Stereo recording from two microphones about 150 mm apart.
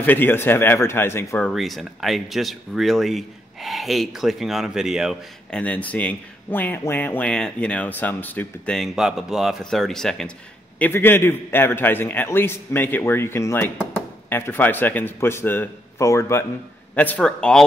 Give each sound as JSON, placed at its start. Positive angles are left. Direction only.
{"t": 0.0, "sound": "speech", "side_deg": 15}
{"t": 1.5, "sound": "speech", "side_deg": 0}
{"t": 5.6, "sound": "speech", "side_deg": 10}
{"t": 10.8, "sound": "speech", "side_deg": 15}